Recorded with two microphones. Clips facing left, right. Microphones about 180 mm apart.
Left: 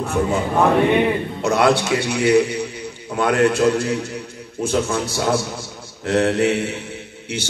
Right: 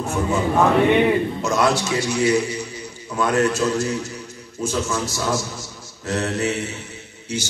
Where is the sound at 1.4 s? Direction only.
60° left (ahead or behind).